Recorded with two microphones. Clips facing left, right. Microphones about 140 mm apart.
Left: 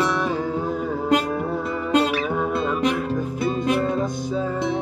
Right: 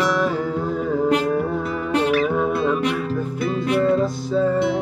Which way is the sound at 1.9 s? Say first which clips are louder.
Even; 20° left (ahead or behind).